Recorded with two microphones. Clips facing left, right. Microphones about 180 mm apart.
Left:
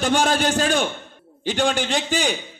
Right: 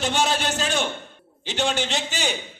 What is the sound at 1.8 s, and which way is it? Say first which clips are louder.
Speech: left 4 dB; 50° left (ahead or behind).